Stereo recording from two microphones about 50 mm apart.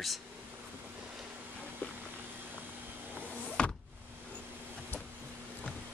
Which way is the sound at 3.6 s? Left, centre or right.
Centre.